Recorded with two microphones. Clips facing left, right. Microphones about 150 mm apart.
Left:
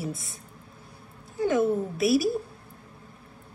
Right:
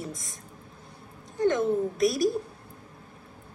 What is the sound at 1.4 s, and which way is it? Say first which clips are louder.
Speech: even; 5° left (ahead or behind).